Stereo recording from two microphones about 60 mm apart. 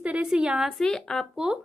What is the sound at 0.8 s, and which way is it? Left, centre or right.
Speech, centre.